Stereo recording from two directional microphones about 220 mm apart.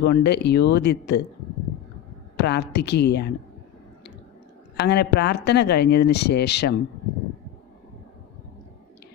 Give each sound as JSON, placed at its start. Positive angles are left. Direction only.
{"t": 0.0, "sound": "speech", "side_deg": 50}
{"t": 2.3, "sound": "speech", "side_deg": 50}
{"t": 4.7, "sound": "speech", "side_deg": 50}